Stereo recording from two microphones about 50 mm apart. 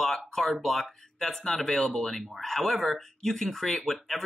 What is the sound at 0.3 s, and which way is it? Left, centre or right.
Speech, centre.